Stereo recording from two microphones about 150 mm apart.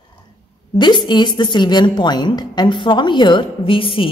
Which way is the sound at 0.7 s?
30° left (ahead or behind).